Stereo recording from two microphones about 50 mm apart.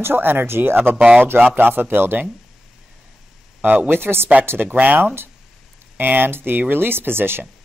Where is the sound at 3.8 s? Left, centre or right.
Right.